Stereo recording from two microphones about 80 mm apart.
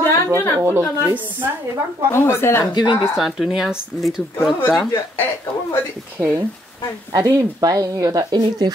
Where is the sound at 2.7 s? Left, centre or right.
Left.